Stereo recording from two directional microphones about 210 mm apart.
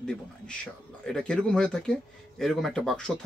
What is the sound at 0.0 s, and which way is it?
Speech, 5° left (ahead or behind).